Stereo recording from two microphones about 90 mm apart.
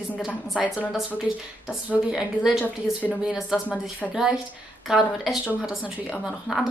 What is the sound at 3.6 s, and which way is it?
Speech, 15° left (ahead or behind).